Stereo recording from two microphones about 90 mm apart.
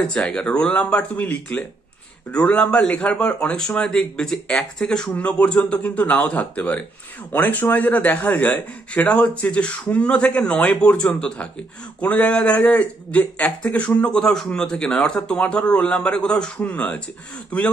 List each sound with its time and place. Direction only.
0.0 s speech: 10° left (ahead or behind)